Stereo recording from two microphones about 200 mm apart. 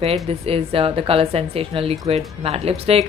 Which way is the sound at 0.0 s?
30° right (ahead or behind).